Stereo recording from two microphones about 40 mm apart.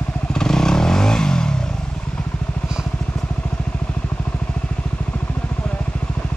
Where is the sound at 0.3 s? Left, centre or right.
Centre.